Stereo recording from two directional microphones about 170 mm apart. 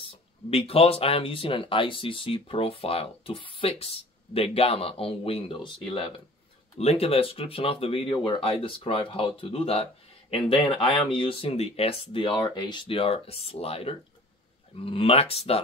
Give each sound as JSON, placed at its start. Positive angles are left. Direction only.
{"t": 0.5, "sound": "speech", "side_deg": 35}